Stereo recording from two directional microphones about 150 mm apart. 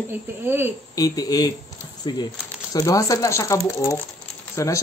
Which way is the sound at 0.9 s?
25° left (ahead or behind).